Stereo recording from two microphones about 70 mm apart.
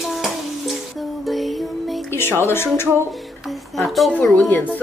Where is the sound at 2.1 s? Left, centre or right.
Left.